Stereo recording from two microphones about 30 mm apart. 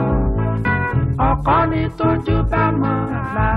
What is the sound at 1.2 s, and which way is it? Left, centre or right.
Music, centre.